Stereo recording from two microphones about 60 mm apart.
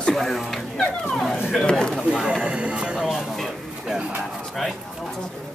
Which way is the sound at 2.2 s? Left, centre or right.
Centre.